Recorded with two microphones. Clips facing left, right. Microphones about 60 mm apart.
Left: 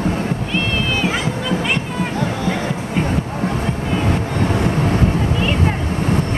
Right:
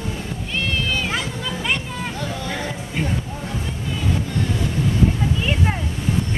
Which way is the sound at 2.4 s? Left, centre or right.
Left.